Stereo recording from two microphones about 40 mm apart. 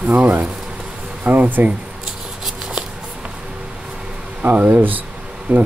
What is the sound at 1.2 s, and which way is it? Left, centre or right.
Speech, right.